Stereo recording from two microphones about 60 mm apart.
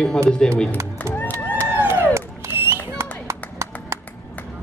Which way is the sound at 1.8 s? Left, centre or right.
Right.